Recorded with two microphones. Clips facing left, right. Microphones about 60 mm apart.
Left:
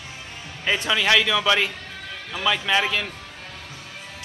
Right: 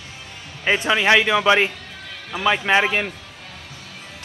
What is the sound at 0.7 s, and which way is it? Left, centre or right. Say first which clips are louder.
A man's voice: right 4 dB; right.